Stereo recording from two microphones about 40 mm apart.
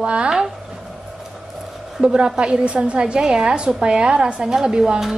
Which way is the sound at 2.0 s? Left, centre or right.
Right.